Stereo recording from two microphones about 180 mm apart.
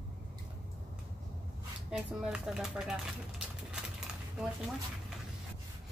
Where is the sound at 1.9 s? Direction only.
5° right (ahead or behind).